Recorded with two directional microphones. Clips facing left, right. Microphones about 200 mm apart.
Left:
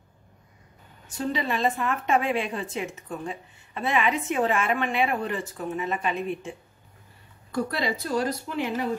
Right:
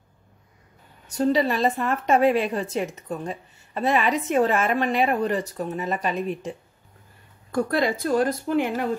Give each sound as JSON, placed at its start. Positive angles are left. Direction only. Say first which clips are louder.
{"t": 1.0, "sound": "a woman's voice", "louder": "right 7 dB", "side_deg": -40}
{"t": 7.5, "sound": "speech", "louder": "right 5 dB", "side_deg": -50}